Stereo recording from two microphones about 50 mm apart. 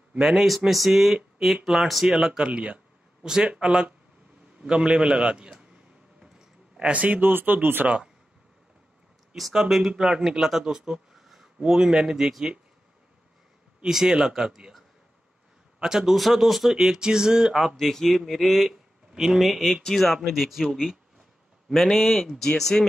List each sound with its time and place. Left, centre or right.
0.2 s speech: centre
2.4 s speech: right
3.2 s speech: centre
4.6 s a sound: centre
6.9 s speech: right
9.5 s speech: centre
13.8 s speech: centre
15.8 s speech: centre
17.7 s speech: centre